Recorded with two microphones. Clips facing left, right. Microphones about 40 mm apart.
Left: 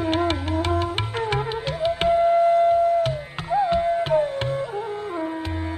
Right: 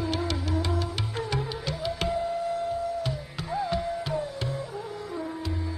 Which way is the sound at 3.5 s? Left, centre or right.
Left.